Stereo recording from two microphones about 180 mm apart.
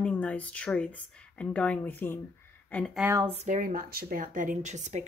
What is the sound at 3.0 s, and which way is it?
Speech, 20° right (ahead or behind).